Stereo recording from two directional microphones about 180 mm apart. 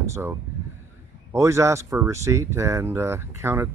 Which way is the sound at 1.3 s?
15° right (ahead or behind).